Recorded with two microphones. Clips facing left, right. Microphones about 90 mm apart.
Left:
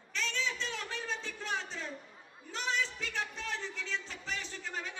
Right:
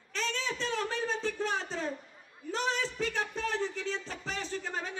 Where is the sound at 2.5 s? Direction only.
40° right (ahead or behind).